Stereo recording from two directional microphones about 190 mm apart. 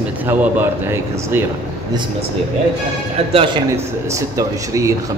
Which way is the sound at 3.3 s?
30° right (ahead or behind).